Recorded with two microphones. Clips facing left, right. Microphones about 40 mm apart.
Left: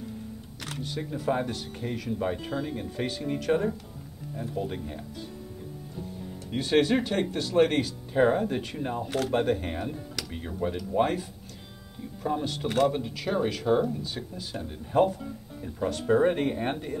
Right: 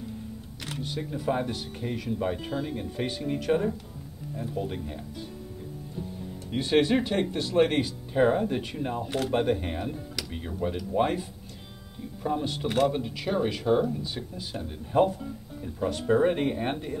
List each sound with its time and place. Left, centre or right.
0.9 s speech: centre
3.5 s speech: centre
6.6 s speech: centre
8.1 s speech: centre
12.2 s speech: centre
12.4 s speech: centre